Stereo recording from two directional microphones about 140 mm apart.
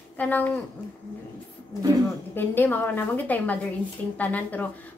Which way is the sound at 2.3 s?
15° left (ahead or behind).